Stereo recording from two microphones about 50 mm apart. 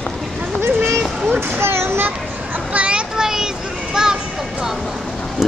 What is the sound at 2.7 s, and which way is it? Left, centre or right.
Children playing, right.